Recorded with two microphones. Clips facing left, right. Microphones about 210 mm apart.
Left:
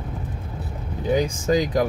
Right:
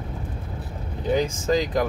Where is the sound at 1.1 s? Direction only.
15° left (ahead or behind).